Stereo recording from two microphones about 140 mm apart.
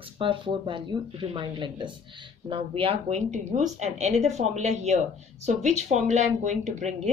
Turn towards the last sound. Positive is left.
turn(degrees=-55)  # may be behind; listen again after turning